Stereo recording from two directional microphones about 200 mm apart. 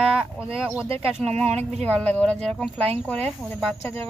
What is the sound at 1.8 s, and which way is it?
Speech, 5° left (ahead or behind).